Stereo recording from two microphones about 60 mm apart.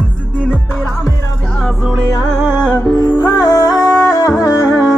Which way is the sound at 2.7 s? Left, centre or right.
Left.